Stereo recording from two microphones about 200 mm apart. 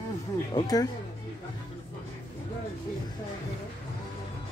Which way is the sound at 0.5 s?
20° left (ahead or behind).